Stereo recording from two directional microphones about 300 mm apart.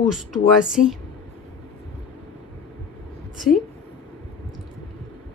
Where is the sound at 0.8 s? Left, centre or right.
Left.